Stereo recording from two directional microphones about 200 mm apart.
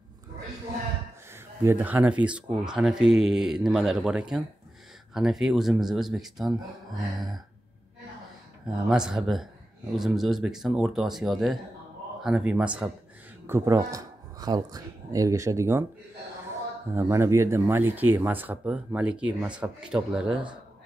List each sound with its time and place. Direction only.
1.3 s speech: 10° right (ahead or behind)
8.8 s speech: 5° right (ahead or behind)
16.9 s speech: 15° right (ahead or behind)